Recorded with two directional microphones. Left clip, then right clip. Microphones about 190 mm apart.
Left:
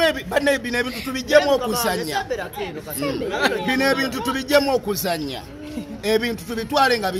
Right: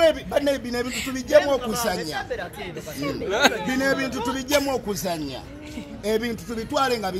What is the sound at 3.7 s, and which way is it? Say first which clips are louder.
A man's voice: left 3 dB; 35° left (ahead or behind).